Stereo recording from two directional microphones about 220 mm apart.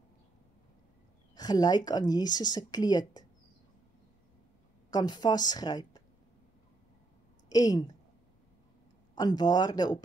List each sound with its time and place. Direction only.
1.3 s speech: 20° left (ahead or behind)
4.9 s speech: 20° left (ahead or behind)
7.4 s a woman's voice: 15° left (ahead or behind)
9.1 s speech: 20° left (ahead or behind)